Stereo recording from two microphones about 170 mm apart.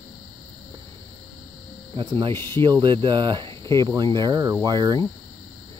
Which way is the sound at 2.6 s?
30° right (ahead or behind).